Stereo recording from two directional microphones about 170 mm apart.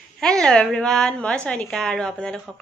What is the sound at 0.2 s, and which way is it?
A woman's voice, 5° left (ahead or behind).